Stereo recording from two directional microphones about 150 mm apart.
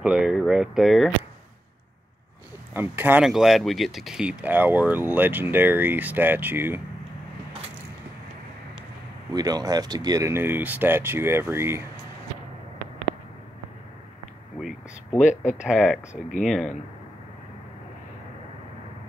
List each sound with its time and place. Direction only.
0.0 s speech: 5° right (ahead or behind)
2.7 s speech: 15° right (ahead or behind)
3.3 s speech: centre (ahead or behind)
9.3 s speech: 25° right (ahead or behind)
15.1 s speech: 55° left (ahead or behind)
15.5 s speech: 5° right (ahead or behind)